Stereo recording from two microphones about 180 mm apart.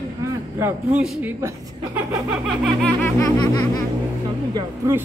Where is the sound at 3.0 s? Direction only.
15° left (ahead or behind).